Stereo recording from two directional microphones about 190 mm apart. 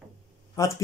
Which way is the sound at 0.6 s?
15° left (ahead or behind).